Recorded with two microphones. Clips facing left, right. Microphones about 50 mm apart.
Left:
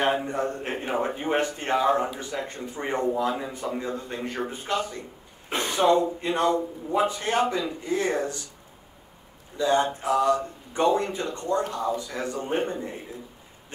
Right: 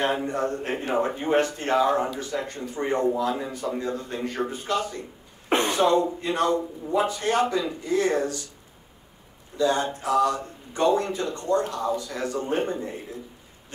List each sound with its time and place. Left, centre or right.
0.1 s a man's voice: centre
5.5 s a sound: right
5.8 s a man's voice: left
9.6 s a man's voice: left